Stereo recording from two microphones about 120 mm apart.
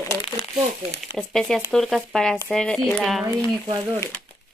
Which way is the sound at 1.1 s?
5° left (ahead or behind).